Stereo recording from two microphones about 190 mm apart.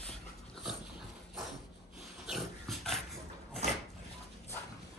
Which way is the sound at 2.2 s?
Centre (ahead or behind).